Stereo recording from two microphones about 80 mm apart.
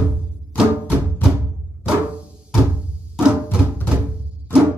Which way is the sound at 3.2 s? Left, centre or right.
Centre.